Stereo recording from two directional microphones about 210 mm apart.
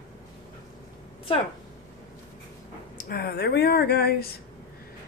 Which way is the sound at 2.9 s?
45° left (ahead or behind).